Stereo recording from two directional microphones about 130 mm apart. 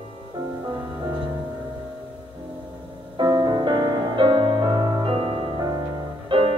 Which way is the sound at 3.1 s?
35° right (ahead or behind).